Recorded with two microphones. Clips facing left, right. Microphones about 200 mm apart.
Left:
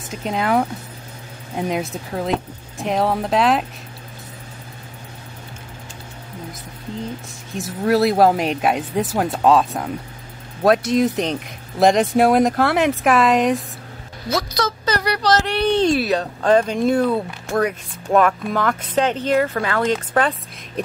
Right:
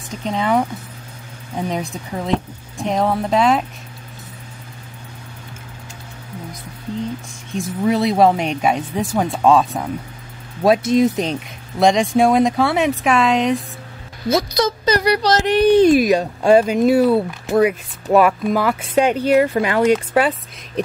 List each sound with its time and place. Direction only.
0.1 s speech: 5° left (ahead or behind)
1.7 s speech: 5° left (ahead or behind)
7.5 s speech: 5° left (ahead or behind)
14.6 s speech: 15° right (ahead or behind)